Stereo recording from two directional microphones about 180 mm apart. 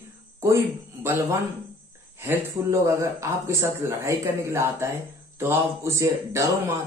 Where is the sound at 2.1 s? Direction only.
15° right (ahead or behind).